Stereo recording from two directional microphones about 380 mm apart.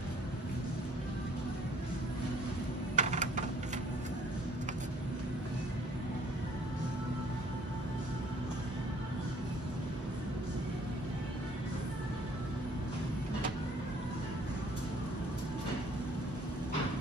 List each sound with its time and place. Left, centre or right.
3.0 s typing: centre